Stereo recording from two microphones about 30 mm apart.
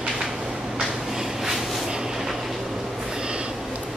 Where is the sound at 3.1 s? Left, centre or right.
Right.